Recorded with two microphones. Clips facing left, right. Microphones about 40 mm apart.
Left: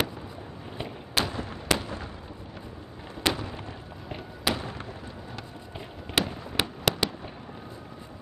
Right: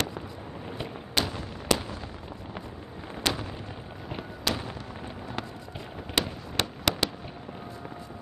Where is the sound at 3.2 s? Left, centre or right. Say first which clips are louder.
Left 2 dB; centre.